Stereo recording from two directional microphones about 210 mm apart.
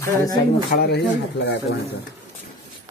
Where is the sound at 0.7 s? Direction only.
50° left (ahead or behind).